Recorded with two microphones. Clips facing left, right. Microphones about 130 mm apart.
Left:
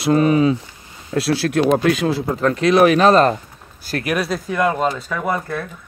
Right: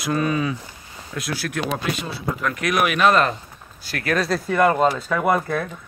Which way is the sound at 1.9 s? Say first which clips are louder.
Left 11 dB; 90° left.